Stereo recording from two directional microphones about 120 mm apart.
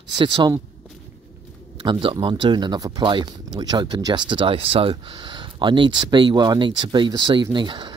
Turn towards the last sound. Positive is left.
turn(degrees=-40)  # may be behind; listen again after turning